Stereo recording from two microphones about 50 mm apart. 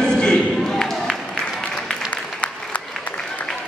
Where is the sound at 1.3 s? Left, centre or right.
Centre.